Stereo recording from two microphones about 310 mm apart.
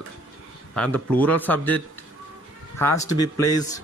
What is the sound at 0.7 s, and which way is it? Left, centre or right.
Speech, centre.